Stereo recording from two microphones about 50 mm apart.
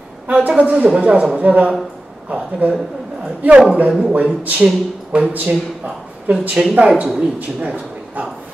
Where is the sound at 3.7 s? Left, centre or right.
Right.